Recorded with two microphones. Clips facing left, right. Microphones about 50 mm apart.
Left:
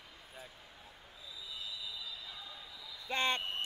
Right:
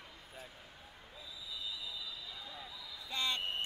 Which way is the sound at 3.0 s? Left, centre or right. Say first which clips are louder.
Left 4 dB; left.